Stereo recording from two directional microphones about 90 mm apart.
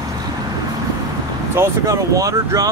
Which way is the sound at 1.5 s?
35° right (ahead or behind).